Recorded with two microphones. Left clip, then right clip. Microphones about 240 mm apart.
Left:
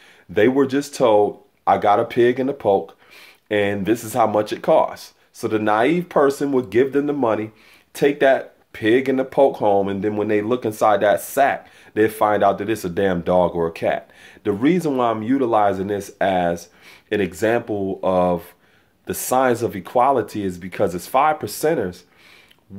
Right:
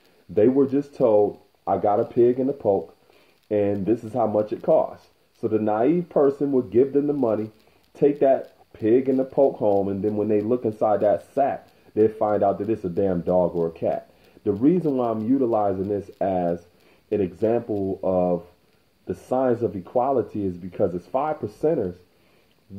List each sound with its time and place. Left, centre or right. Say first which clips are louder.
0.3 s speech: left 2 dB; left